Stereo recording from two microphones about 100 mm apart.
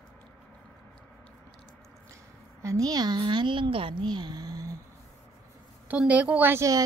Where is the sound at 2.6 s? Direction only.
35° right (ahead or behind); by 4.1 s 55° right (ahead or behind).